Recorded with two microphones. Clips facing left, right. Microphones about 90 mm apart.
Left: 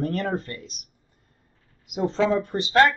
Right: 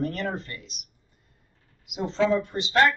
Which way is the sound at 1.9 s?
40° left (ahead or behind).